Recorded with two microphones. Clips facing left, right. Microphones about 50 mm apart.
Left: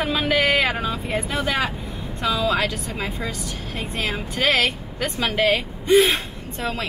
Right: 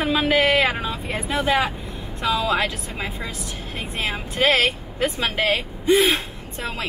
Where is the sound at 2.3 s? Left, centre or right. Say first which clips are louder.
Even; right.